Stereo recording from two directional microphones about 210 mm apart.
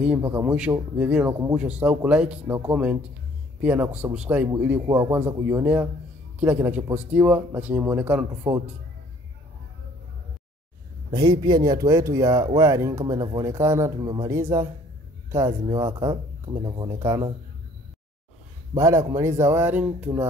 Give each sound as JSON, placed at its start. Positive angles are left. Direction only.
{"t": 0.0, "sound": "speech", "side_deg": -10}
{"t": 11.1, "sound": "speech", "side_deg": -20}
{"t": 18.8, "sound": "speech", "side_deg": -15}